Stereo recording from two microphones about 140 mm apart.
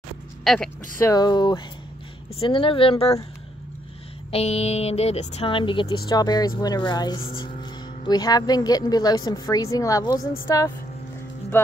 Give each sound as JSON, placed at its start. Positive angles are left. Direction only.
{"t": 0.4, "sound": "speech", "side_deg": 5}
{"t": 1.0, "sound": "a woman's voice", "side_deg": 30}
{"t": 4.3, "sound": "speech", "side_deg": 45}
{"t": 8.0, "sound": "a woman's voice", "side_deg": 30}
{"t": 11.5, "sound": "cattle", "side_deg": 15}